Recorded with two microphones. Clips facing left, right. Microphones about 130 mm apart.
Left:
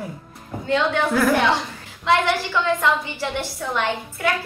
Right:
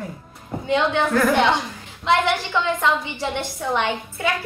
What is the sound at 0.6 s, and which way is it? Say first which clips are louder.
Speech: even; 15° right (ahead or behind).